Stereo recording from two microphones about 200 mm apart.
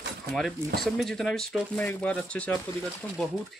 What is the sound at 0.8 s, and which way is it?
Speech, centre (ahead or behind).